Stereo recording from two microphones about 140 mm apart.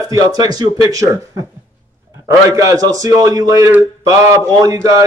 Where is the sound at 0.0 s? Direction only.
25° right (ahead or behind).